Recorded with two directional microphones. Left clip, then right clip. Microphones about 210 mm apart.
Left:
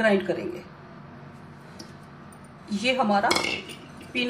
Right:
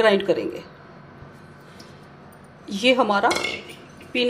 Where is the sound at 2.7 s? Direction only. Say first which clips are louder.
Right 5 dB; 35° right (ahead or behind).